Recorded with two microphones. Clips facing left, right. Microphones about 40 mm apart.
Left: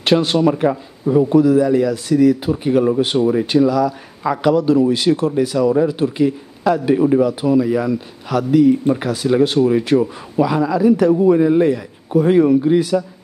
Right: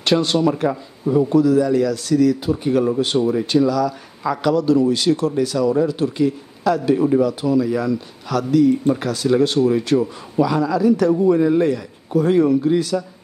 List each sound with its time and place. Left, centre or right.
0.0 s a man's voice: left